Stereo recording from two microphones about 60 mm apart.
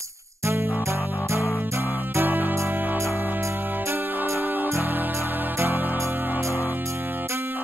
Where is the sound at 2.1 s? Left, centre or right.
Right.